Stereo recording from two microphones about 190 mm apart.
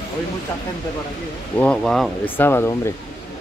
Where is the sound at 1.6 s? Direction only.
5° left (ahead or behind).